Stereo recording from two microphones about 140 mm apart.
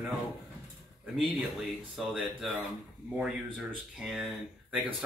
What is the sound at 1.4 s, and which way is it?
Speech, centre (ahead or behind).